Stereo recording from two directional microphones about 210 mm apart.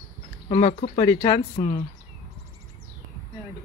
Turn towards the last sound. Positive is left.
turn(degrees=20)  # may be behind; listen again after turning